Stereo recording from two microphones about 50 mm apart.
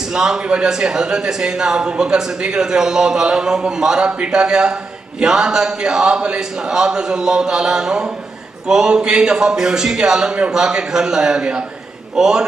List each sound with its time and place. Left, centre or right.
0.1 s a man's voice: centre